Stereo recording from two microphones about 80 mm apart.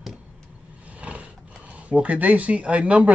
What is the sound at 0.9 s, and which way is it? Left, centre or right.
Speech, centre.